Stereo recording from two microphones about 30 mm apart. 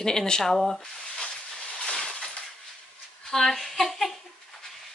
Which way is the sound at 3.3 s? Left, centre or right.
Centre.